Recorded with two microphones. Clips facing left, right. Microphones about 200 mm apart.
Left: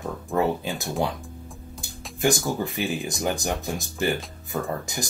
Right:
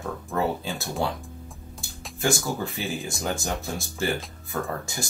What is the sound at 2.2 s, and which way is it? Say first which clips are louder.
Speech: left 3 dB; 15° left (ahead or behind).